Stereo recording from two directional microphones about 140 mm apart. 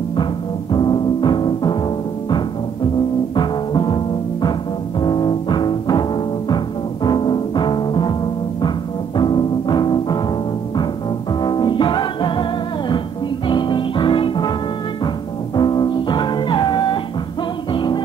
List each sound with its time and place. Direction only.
0.1 s music: 35° left (ahead or behind)
3.3 s music: 35° left (ahead or behind)
11.4 s music: 30° left (ahead or behind)
15.5 s music: 30° left (ahead or behind)